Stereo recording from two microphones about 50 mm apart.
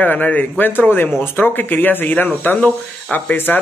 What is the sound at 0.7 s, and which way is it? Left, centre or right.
Speech, left.